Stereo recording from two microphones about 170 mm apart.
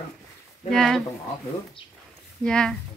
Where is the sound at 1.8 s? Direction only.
30° left (ahead or behind).